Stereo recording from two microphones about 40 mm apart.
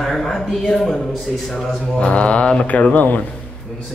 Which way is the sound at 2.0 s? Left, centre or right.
Left.